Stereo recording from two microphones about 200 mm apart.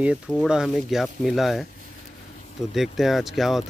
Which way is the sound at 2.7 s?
Centre (ahead or behind).